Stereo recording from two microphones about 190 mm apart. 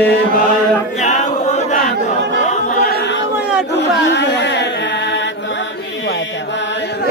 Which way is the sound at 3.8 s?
60° left (ahead or behind).